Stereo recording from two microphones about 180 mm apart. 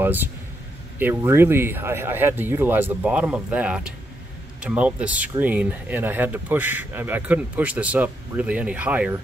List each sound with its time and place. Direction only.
0.0 s a man's voice: 10° right (ahead or behind)